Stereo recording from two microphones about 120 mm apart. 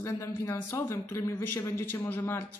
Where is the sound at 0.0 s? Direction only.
25° left (ahead or behind).